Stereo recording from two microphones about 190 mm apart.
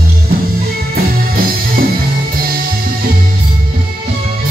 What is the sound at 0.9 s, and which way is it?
Music, 50° right (ahead or behind).